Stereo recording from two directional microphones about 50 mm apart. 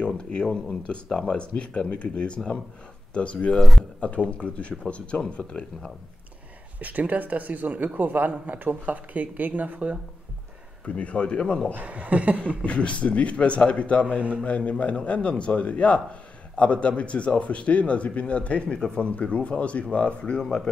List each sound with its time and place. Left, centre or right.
0.0 s speech: centre
3.5 s speech: centre
4.0 s speech: left
6.8 s speech: right
11.0 s speech: left
11.7 s speech: right
12.6 s speech: left